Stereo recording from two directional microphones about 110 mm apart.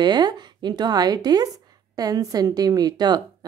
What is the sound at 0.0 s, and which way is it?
A woman's voice, 40° right (ahead or behind).